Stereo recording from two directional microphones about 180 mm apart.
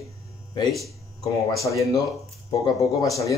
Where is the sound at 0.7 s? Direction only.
Centre (ahead or behind).